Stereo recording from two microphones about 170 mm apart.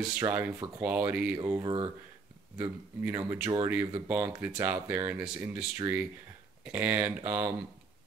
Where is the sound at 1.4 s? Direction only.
25° right (ahead or behind).